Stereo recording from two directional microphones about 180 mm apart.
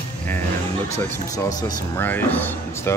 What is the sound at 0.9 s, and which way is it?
Speech, 15° left (ahead or behind).